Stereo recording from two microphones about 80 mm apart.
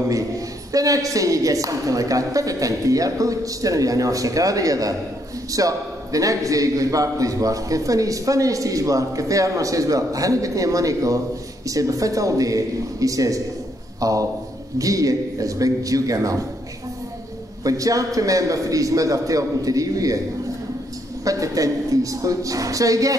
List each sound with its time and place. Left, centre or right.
0.7 s a man's voice: right
17.6 s a man's voice: right
21.2 s a man's voice: right